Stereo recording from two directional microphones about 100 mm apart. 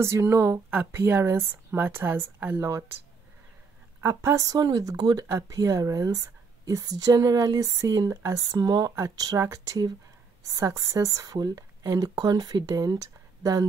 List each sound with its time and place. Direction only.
0.0 s speech: 25° right (ahead or behind)
4.0 s speech: 25° right (ahead or behind)